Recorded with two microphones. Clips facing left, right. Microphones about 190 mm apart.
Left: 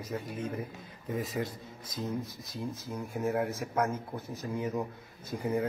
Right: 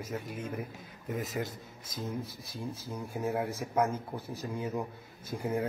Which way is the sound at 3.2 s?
15° right (ahead or behind).